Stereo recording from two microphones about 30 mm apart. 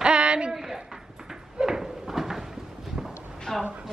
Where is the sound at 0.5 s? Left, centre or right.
Centre.